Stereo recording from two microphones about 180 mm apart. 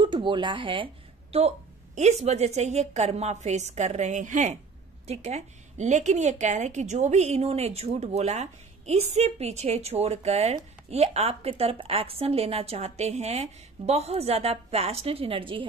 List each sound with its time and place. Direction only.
0.0 s a woman's voice: 25° right (ahead or behind)